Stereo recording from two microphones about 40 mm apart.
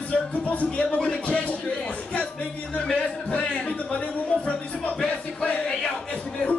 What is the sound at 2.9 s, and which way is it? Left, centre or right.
Speech, left.